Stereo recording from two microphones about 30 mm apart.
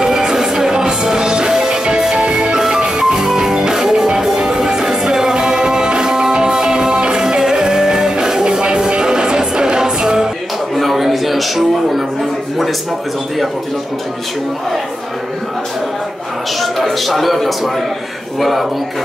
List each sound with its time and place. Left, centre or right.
0.0 s music: right
2.6 s music: centre
10.8 s a sound: centre
17.0 s speech: centre